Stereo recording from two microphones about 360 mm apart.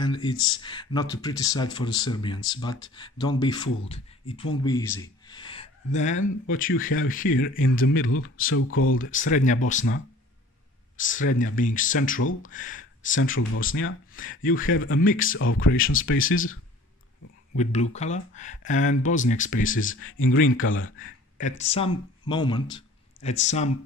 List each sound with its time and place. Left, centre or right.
0.0 s speech: centre
5.3 s gasp: centre
6.4 s speech: left
6.8 s speech: left
9.3 s speech: left
11.0 s speech: left
12.2 s speech: left
12.4 s speech: left
13.1 s speech: left
15.3 s speech: left
17.9 s speech: centre
19.7 s speech: left
21.4 s speech: centre